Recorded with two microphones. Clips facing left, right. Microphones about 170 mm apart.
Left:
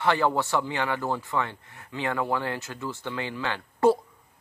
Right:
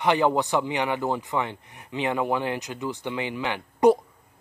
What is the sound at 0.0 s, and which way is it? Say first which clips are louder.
Speech: right 2 dB; 20° right (ahead or behind).